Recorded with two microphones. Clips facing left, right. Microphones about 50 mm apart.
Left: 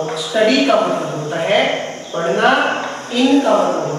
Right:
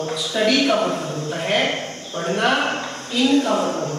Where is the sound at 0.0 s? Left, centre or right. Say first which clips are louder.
Left 5 dB; centre.